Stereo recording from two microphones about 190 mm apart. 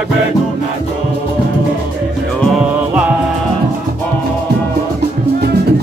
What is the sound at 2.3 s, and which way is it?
Music, centre (ahead or behind).